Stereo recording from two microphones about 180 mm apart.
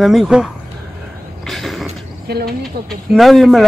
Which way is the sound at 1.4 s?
Centre (ahead or behind).